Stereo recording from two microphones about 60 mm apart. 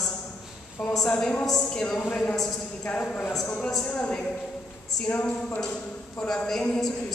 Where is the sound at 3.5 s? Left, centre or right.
Centre.